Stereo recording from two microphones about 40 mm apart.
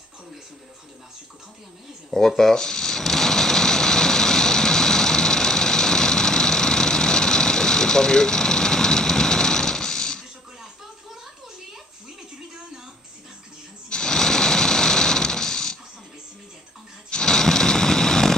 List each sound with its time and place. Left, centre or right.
2.1 s sewing machine: centre
13.8 s a sound: centre
17.1 s snoring: centre